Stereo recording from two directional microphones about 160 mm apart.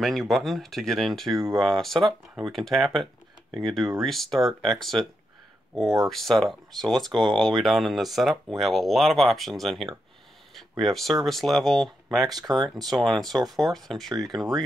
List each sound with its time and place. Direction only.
0.0 s speech: centre (ahead or behind)
12.3 s speech: 25° right (ahead or behind)
12.8 s speech: centre (ahead or behind)